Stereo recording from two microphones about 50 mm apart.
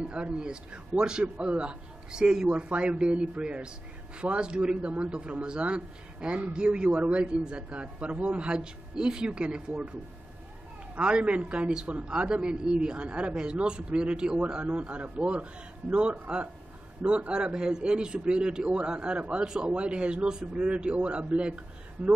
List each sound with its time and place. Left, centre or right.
0.0 s a man's voice: right
11.0 s a man's voice: right
22.0 s speech: right